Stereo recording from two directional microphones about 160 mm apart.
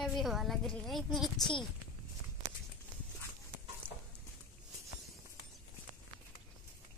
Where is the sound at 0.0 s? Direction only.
Centre (ahead or behind).